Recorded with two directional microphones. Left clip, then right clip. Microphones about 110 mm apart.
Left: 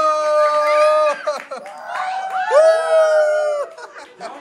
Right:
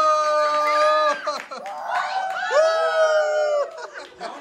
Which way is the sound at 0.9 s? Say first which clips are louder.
Left 4 dB; 30° right (ahead or behind).